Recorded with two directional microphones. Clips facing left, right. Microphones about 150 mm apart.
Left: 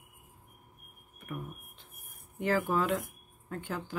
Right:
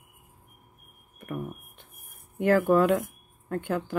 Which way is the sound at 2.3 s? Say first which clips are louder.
Right 8 dB; 60° right (ahead or behind).